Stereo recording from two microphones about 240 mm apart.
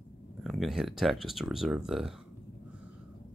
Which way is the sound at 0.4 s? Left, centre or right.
Centre.